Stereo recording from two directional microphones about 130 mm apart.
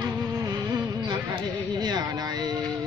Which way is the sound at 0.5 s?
35° right (ahead or behind).